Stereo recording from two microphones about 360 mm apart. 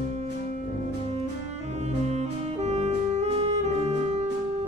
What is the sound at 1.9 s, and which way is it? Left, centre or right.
Saxophone, centre.